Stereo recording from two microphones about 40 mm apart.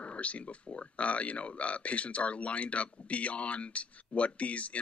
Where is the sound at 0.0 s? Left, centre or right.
Left.